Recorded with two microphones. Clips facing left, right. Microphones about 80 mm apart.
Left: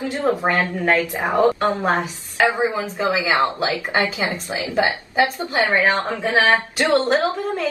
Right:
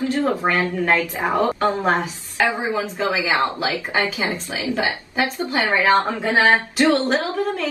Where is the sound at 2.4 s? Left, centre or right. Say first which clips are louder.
Left 2 dB; left.